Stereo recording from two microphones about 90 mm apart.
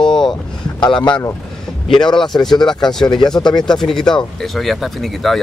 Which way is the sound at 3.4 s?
55° left (ahead or behind).